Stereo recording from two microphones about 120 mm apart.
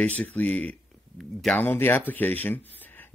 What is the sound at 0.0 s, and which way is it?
Speech, 10° left (ahead or behind).